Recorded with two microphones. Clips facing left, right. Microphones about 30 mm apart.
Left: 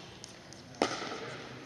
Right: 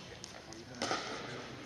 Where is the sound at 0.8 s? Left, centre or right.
Left.